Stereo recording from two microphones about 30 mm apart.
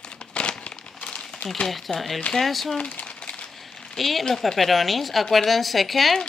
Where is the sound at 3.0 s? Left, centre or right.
Left.